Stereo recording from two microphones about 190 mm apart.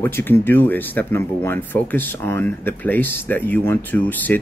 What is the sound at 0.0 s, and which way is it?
Speech, 10° left (ahead or behind).